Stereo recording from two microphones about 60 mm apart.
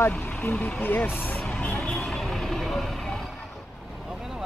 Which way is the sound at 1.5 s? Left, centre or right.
Centre.